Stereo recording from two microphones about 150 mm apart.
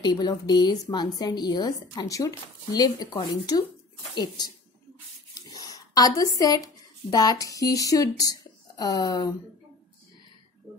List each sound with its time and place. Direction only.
0.0 s a woman's voice: 30° left (ahead or behind)
5.3 s a sound: 25° left (ahead or behind)
7.1 s a woman's voice: 25° left (ahead or behind)